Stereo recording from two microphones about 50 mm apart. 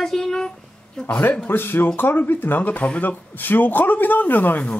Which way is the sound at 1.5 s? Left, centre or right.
Left.